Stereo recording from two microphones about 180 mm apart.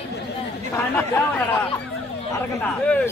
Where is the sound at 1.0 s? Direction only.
10° left (ahead or behind).